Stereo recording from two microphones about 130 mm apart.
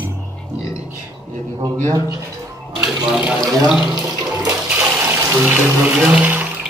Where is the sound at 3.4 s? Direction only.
25° right (ahead or behind).